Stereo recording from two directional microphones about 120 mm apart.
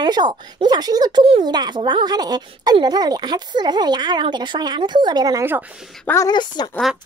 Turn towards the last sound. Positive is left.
turn(degrees=35)  # may be behind; listen again after turning